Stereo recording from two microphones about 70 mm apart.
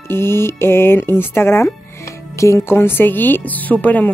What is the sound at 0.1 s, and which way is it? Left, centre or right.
Speech, left.